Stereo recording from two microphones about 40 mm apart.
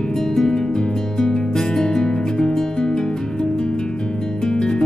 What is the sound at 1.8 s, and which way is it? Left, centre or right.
Music, centre.